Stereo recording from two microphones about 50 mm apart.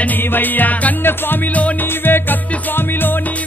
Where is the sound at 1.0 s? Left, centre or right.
Left.